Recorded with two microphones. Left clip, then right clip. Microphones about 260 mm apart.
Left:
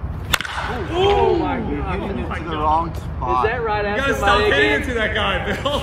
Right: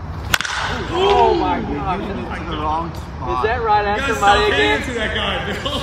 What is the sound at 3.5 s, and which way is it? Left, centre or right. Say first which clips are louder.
Speech: right 5 dB; centre.